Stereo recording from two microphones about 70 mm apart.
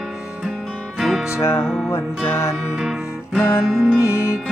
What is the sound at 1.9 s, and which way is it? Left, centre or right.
Music, left.